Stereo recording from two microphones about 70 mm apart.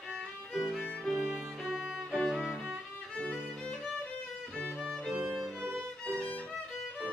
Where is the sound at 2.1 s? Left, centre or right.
Centre.